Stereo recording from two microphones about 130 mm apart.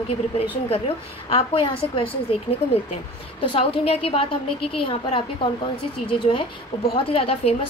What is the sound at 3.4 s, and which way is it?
A woman's voice, 45° left (ahead or behind).